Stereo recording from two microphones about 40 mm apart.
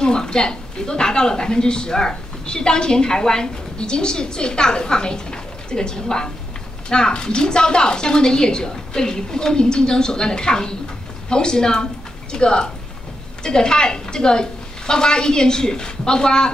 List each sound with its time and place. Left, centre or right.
0.0 s a woman's voice: centre